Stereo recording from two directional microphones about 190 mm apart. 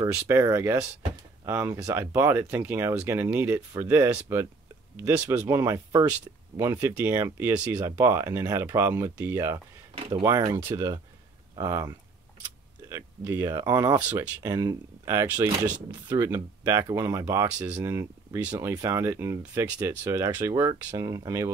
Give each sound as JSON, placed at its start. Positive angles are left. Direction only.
{"t": 0.0, "sound": "speech", "side_deg": -15}
{"t": 5.6, "sound": "speech", "side_deg": -20}
{"t": 9.9, "sound": "a sound", "side_deg": -30}
{"t": 10.2, "sound": "speech", "side_deg": -15}